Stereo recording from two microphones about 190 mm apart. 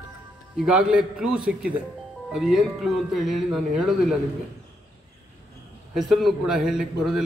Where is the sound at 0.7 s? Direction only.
5° right (ahead or behind).